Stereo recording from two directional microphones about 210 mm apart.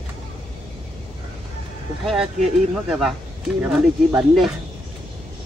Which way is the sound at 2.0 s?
Centre (ahead or behind).